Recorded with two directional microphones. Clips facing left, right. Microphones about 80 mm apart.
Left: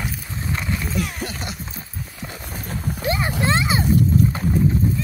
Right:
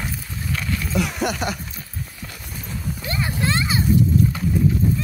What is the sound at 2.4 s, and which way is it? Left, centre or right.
Clip-clop, left.